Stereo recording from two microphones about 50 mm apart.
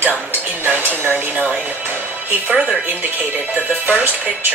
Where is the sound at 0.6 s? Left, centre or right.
Right.